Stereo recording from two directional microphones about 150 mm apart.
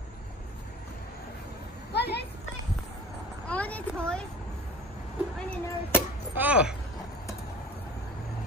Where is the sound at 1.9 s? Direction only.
90° left.